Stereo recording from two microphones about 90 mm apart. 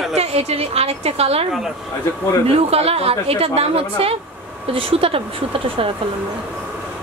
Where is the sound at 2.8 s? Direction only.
90° right.